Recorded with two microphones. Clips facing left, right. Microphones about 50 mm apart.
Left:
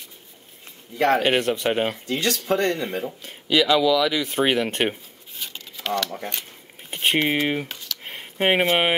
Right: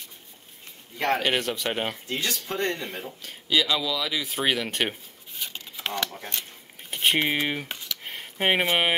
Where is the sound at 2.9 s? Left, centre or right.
Left.